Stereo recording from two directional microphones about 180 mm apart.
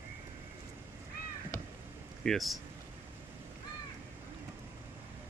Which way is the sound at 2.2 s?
Centre (ahead or behind).